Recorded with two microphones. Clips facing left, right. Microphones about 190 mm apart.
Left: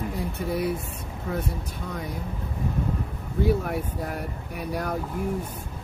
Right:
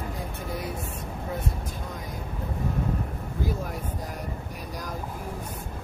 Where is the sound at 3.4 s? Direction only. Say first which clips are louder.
Left 8 dB; 65° left (ahead or behind).